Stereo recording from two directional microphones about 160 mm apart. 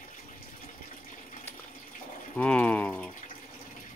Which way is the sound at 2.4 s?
5° left (ahead or behind).